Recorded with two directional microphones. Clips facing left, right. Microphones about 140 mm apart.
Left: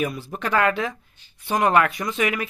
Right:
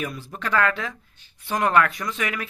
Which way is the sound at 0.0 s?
15° left (ahead or behind).